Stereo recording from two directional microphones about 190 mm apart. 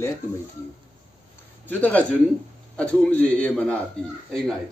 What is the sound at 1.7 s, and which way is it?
A man's voice, 10° left (ahead or behind).